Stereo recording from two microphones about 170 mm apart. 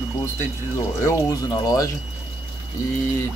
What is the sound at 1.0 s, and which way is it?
Speech, 20° left (ahead or behind).